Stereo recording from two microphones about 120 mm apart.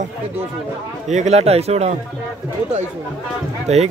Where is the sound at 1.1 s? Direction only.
75° right (ahead or behind).